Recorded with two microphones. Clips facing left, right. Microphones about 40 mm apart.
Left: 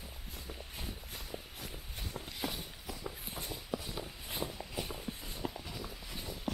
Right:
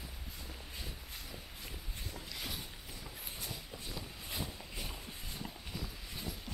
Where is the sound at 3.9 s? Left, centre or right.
Centre.